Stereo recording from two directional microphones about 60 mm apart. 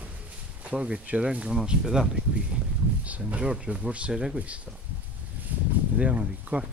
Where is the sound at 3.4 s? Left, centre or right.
Centre.